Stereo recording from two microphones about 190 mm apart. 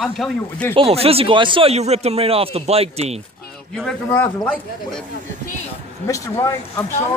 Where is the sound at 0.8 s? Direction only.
30° right (ahead or behind).